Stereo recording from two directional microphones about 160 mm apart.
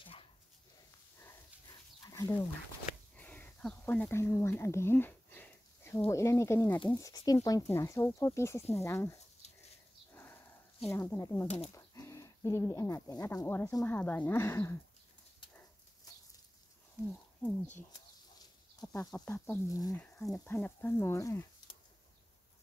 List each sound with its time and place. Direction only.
0.0 s dog: 35° left (ahead or behind)
1.2 s dog: 20° left (ahead or behind)
3.2 s speech: 10° left (ahead or behind)
9.4 s dog: 40° left (ahead or behind)
10.1 s a sound: 15° left (ahead or behind)
10.9 s speech: 15° left (ahead or behind)
11.4 s speech: 45° left (ahead or behind)
11.7 s speech: 20° left (ahead or behind)
16.1 s bird flight: 25° left (ahead or behind)
17.4 s speech: 10° left (ahead or behind)
18.8 s a sound: 20° left (ahead or behind)
19.2 s speech: 15° left (ahead or behind)
20.0 s speech: 5° left (ahead or behind)